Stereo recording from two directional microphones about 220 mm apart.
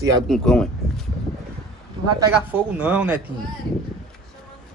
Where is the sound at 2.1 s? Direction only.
10° right (ahead or behind).